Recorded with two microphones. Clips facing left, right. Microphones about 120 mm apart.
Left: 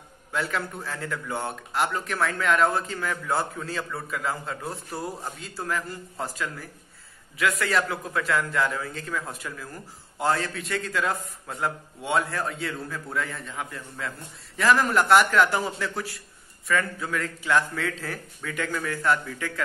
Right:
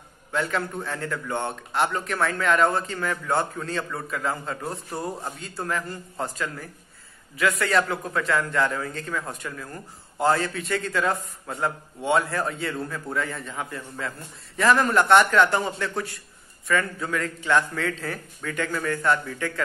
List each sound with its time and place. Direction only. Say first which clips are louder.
0.3 s a man's voice: right 3 dB; centre (ahead or behind)